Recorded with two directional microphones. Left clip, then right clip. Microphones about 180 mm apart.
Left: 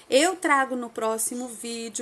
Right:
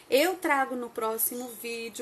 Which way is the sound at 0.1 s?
25° left (ahead or behind).